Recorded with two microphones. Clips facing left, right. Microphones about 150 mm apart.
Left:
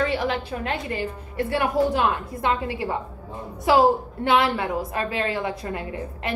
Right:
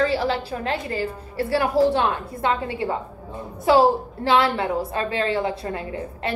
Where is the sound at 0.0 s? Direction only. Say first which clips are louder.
Right 2 dB; 30° right (ahead or behind).